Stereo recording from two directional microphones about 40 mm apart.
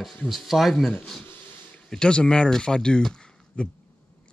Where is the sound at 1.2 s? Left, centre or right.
Left.